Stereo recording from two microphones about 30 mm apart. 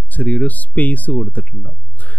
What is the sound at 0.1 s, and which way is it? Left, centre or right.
Speech, left.